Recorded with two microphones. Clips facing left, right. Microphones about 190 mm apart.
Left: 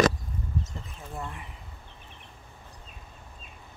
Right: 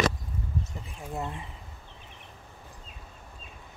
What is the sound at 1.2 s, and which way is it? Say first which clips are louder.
Speech: right 3 dB; 25° right (ahead or behind).